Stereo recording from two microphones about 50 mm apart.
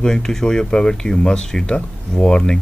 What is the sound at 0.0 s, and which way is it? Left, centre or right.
Speech, centre.